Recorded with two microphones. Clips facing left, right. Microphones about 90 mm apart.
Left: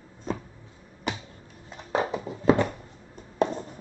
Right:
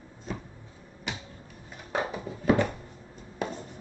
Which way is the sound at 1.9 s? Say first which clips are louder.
Left 4 dB; 25° left (ahead or behind).